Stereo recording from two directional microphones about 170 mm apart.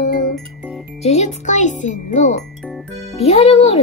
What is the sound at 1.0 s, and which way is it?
A child's voice, 40° left (ahead or behind).